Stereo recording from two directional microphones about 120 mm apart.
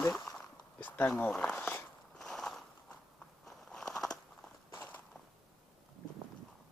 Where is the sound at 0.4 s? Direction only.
15° left (ahead or behind).